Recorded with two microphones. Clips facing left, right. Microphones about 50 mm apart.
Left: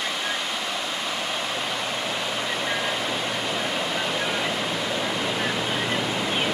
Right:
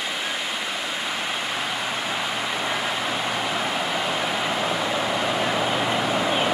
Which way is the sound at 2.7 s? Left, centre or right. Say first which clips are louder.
Right 1 dB; centre.